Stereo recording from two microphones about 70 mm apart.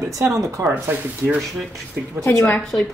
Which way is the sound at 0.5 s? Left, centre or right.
Right.